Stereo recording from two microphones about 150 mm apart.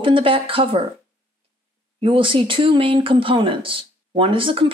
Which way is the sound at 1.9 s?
35° right (ahead or behind).